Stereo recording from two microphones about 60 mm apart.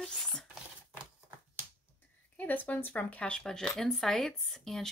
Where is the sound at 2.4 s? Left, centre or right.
Left.